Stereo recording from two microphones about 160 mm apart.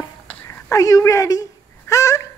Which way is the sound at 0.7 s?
20° left (ahead or behind).